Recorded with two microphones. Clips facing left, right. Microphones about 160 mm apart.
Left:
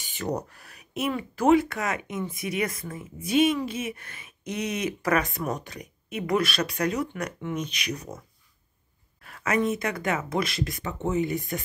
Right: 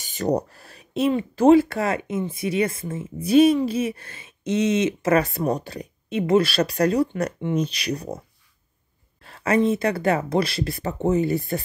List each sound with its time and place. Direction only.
0.0 s speech: 40° right (ahead or behind)
9.2 s speech: 30° right (ahead or behind)